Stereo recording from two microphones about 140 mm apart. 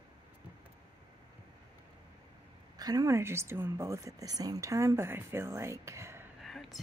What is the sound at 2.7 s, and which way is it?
Speech, 25° right (ahead or behind).